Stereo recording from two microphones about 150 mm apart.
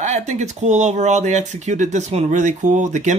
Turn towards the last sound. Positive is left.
turn(degrees=-55)  # may be behind; listen again after turning